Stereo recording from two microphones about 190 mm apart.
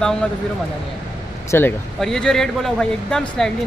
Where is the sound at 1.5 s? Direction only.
10° left (ahead or behind).